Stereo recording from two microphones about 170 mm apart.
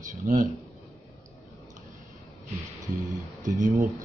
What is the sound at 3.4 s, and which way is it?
Speech, 50° right (ahead or behind).